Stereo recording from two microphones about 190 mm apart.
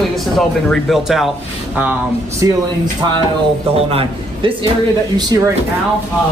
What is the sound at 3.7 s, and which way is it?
A man's voice, 30° right (ahead or behind).